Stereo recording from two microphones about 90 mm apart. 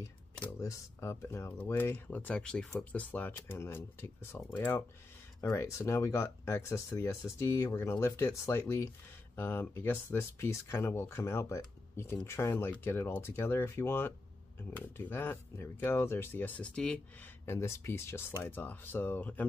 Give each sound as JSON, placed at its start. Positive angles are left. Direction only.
{"t": 0.6, "sound": "speech", "side_deg": 30}
{"t": 3.3, "sound": "speech", "side_deg": 30}
{"t": 17.5, "sound": "speech", "side_deg": 30}